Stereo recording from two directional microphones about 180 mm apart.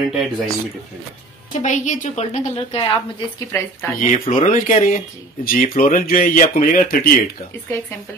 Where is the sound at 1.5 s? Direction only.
45° left (ahead or behind).